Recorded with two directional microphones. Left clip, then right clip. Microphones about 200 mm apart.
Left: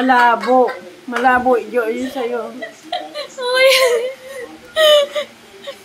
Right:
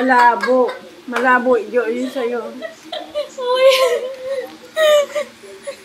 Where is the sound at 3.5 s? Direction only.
45° left (ahead or behind).